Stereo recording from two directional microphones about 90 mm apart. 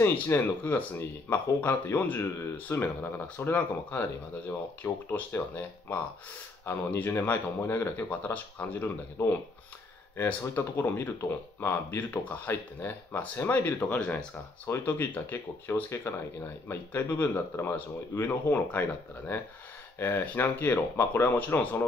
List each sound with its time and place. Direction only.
0.0 s speech: 25° left (ahead or behind)
5.1 s speech: 15° left (ahead or behind)
8.8 s speech: 30° left (ahead or behind)